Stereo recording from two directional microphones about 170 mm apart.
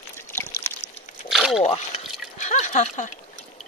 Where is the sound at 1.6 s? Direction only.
40° left (ahead or behind).